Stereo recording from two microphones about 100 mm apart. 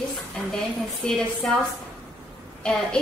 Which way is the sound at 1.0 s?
5° left (ahead or behind).